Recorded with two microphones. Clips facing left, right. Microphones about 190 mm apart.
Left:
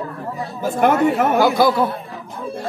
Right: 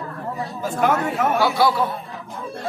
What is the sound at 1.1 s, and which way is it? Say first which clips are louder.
Speech: left 4 dB; 65° left (ahead or behind).